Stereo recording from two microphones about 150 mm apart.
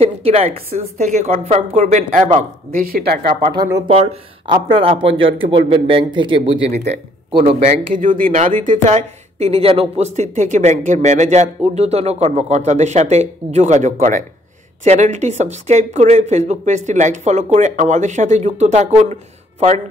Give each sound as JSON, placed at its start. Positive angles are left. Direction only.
{"t": 0.0, "sound": "speech", "side_deg": -40}
{"t": 2.3, "sound": "speech", "side_deg": -75}
{"t": 3.8, "sound": "a man's voice", "side_deg": -40}
{"t": 7.9, "sound": "speech", "side_deg": -60}